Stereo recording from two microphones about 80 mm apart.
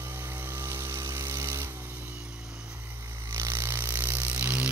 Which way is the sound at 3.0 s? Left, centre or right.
Right.